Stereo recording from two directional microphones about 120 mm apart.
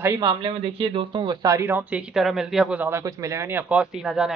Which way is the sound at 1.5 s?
20° right (ahead or behind).